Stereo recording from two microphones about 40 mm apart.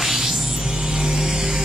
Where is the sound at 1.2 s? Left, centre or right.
Right.